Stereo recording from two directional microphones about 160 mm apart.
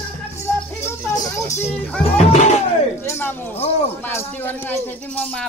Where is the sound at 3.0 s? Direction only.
15° left (ahead or behind).